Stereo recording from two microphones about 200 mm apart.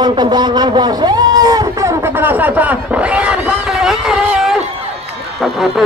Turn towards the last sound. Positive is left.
turn(degrees=0)  # may be behind; listen again after turning